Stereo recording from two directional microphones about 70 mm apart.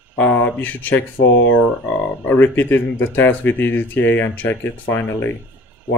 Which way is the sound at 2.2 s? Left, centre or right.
Left.